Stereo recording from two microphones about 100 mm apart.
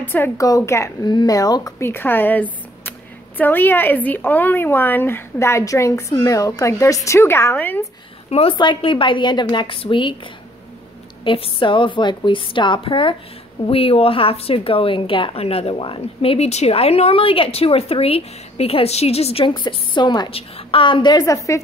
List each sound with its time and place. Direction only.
0.0 s a woman's voice: 20° left (ahead or behind)
0.4 s speech: 35° left (ahead or behind)
1.0 s speech: 40° left (ahead or behind)
1.9 s a woman's voice: 20° left (ahead or behind)
8.3 s a woman's voice: 75° left (ahead or behind)
8.5 s a woman's voice: 55° left (ahead or behind)
13.7 s speech: 70° left (ahead or behind)
19.5 s a woman's voice: 50° left (ahead or behind)
20.2 s a woman's voice: 70° left (ahead or behind); by 21.2 s 50° left (ahead or behind)
21.2 s speech: 35° left (ahead or behind)